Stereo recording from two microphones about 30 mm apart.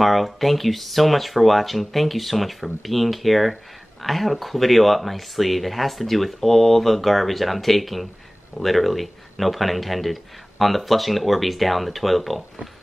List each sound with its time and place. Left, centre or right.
0.0 s speech: centre